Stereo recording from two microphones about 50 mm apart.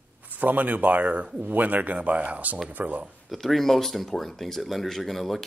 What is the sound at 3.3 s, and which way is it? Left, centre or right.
Speech, centre.